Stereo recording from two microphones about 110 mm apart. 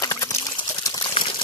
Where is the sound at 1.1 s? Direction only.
50° left (ahead or behind).